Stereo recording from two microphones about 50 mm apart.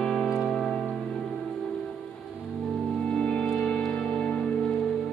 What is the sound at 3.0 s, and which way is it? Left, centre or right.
Music, centre.